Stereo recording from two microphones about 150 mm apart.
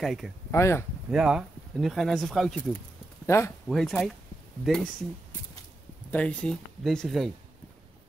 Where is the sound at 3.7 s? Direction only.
Centre (ahead or behind).